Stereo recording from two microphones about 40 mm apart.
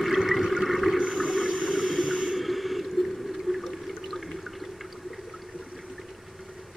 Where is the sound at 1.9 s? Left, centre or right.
Centre.